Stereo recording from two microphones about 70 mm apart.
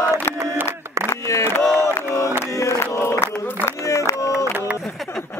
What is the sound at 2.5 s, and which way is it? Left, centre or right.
Chant, left.